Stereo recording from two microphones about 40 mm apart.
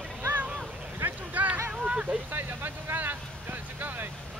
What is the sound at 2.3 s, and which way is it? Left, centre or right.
Vehicle, right.